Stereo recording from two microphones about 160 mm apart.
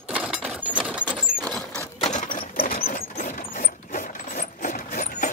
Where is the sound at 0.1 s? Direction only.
10° right (ahead or behind).